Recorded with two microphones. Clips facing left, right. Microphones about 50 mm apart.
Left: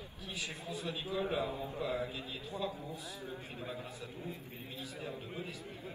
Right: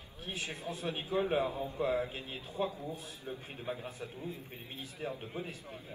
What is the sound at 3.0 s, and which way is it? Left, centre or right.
Speech, left.